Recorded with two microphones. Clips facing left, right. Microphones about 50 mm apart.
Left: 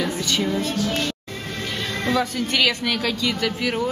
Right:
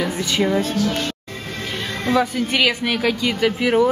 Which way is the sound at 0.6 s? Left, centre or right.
Right.